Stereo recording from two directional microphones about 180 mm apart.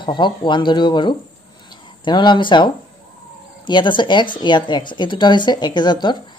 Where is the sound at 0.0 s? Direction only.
25° left (ahead or behind).